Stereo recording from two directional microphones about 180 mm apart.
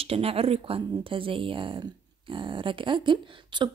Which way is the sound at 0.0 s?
30° right (ahead or behind).